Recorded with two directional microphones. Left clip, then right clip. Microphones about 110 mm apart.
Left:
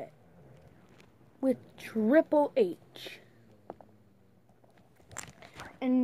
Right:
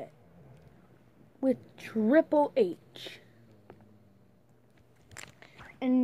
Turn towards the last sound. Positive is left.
turn(degrees=0)  # may be behind; listen again after turning